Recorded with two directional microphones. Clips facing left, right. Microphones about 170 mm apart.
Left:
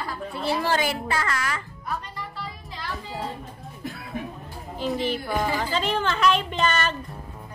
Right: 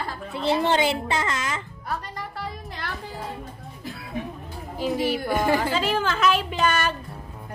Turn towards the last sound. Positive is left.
turn(degrees=-10)  # may be behind; listen again after turning